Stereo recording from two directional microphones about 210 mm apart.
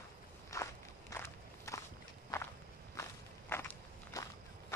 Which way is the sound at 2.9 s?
15° left (ahead or behind).